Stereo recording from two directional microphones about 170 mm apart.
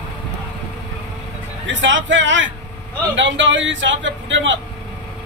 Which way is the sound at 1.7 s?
90° right.